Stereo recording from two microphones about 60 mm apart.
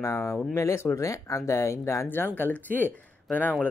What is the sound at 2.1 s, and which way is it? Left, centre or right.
Speech, left.